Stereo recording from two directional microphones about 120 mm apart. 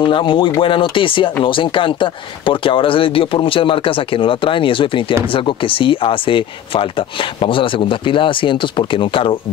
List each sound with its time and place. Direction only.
0.0 s speech: 45° left (ahead or behind)